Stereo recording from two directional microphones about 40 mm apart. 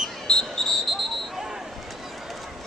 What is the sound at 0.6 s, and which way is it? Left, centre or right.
Frog, centre.